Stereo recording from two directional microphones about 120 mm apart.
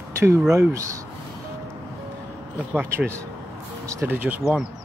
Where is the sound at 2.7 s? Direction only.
20° right (ahead or behind).